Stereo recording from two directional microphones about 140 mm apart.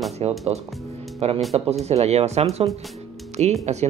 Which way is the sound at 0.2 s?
45° right (ahead or behind).